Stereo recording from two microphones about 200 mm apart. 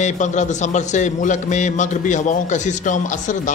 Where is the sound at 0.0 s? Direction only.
35° left (ahead or behind).